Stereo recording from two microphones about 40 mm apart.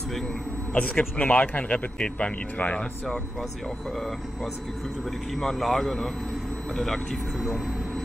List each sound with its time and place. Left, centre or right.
0.7 s speech: left
5.3 s a man's voice: centre
7.4 s speech: centre